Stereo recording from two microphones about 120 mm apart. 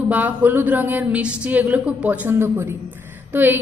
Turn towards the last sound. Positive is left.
turn(degrees=-15)  # may be behind; listen again after turning